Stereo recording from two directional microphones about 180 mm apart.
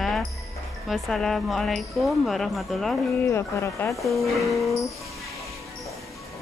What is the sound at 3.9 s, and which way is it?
Speech, centre (ahead or behind).